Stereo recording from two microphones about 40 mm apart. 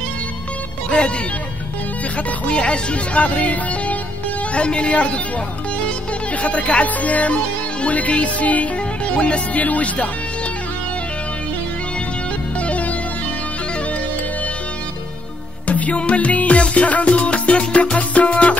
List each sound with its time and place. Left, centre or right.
0.8 s music: left
2.4 s speech: left
4.6 s speech: left
6.4 s speech: left
7.8 s music: left
9.1 s speech: left
12.6 s music: left
15.6 s music: left